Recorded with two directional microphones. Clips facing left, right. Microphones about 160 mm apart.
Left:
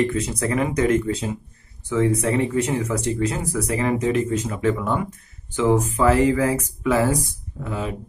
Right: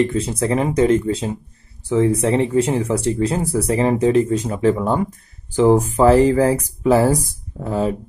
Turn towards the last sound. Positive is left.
turn(degrees=-35)  # may be behind; listen again after turning